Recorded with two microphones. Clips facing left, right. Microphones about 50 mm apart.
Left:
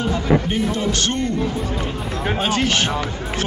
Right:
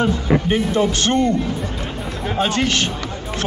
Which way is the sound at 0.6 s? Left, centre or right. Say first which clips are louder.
Right 3 dB; centre.